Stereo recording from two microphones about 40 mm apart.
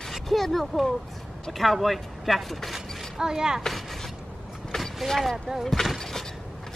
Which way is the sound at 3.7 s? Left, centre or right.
Centre.